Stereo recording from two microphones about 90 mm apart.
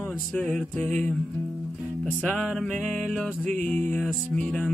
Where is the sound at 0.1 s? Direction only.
5° left (ahead or behind).